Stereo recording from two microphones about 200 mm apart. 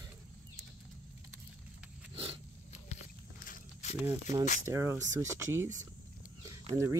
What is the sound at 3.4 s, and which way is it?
Walk, 40° left (ahead or behind).